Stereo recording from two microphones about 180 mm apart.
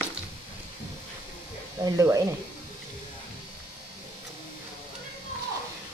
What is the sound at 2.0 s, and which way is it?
Speech, 20° right (ahead or behind).